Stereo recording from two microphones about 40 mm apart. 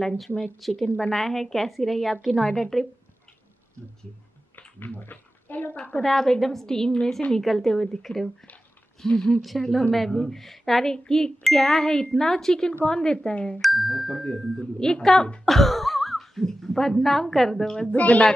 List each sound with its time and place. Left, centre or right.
0.6 s speech: centre
0.9 s speech: left
1.2 s a woman's voice: centre
4.6 s a sound: left
6.0 s a woman's voice: centre
9.0 s speech: centre
9.6 s a woman's voice: centre; by 13.6 s left
13.6 s a woman's voice: centre
17.8 s speech: left